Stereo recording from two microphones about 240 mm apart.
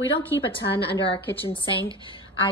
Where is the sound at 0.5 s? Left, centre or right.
Left.